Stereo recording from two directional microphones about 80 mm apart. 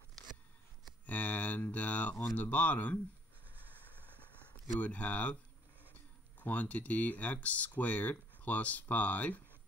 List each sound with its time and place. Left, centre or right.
1.0 s mantra: centre
2.3 s speech: centre
4.4 s speech: centre
6.4 s speech: left